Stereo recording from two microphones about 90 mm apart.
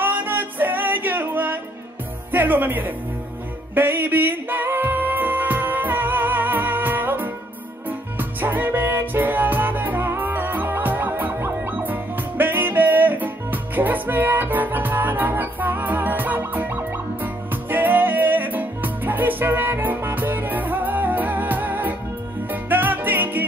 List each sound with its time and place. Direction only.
0.0 s music: 20° right (ahead or behind)
2.3 s speech: 20° right (ahead or behind)
3.7 s music: 25° right (ahead or behind)